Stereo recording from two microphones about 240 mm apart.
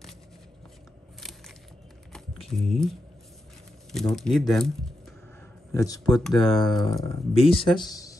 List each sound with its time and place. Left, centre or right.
2.4 s speech: centre
4.1 s speech: centre
5.7 s speech: centre